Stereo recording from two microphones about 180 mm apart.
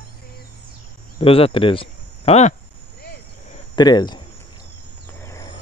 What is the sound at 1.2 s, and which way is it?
Speech, 30° left (ahead or behind).